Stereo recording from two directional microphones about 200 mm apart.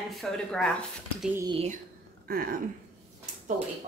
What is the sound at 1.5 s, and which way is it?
Speech, 30° right (ahead or behind).